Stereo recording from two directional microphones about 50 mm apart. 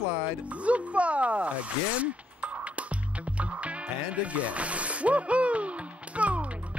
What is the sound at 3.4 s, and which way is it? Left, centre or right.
Music, right.